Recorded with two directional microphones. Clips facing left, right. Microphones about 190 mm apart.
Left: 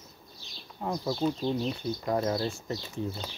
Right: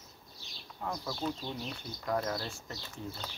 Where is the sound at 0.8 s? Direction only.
30° left (ahead or behind).